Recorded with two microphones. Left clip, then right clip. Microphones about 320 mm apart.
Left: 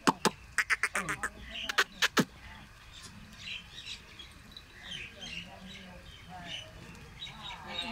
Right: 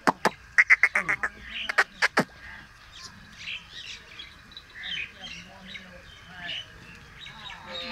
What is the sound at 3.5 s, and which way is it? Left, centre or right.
Bird, left.